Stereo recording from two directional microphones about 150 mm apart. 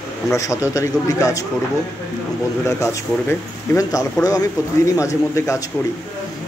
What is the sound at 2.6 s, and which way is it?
Speech, 20° left (ahead or behind).